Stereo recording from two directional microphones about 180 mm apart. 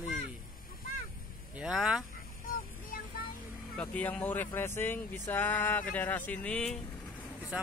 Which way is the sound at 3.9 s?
10° left (ahead or behind).